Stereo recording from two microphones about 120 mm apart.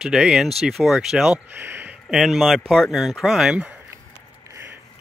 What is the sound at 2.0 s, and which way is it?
Speech, centre (ahead or behind).